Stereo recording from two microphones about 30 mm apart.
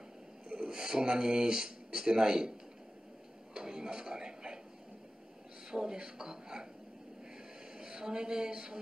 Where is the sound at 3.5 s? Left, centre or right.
Right.